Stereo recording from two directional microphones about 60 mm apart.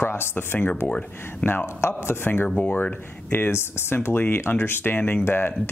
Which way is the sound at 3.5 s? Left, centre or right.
Left.